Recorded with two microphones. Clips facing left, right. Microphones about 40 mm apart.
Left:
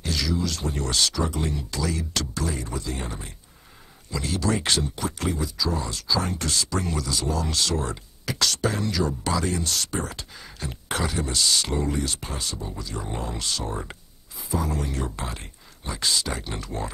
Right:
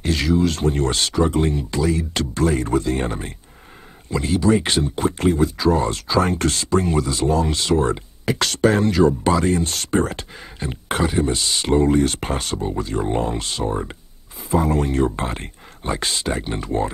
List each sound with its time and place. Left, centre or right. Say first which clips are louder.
0.0 s speech: right 8 dB; right
1.8 s speech: right 7 dB; right
2.4 s speech: right 11 dB; right
4.1 s speech: right 8 dB; right
4.9 s speech: right 9 dB; right
14.4 s speech: right 9 dB; right